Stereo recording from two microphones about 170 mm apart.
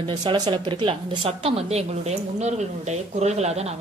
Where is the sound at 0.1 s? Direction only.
25° right (ahead or behind).